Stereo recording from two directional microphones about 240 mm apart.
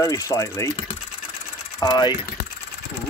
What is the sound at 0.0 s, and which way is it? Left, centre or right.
Speech, centre.